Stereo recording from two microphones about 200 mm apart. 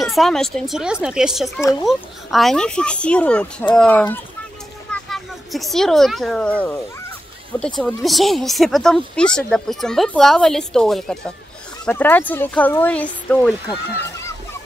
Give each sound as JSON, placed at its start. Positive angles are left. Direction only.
{"t": 0.0, "sound": "speech", "side_deg": 0}
{"t": 1.6, "sound": "speech", "side_deg": 15}
{"t": 1.9, "sound": "speech", "side_deg": 0}
{"t": 7.8, "sound": "speech", "side_deg": 0}